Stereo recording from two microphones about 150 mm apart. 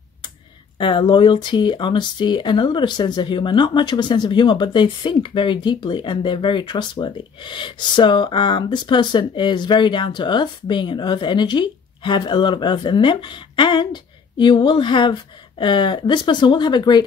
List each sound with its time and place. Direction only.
0.7 s speech: 35° left (ahead or behind)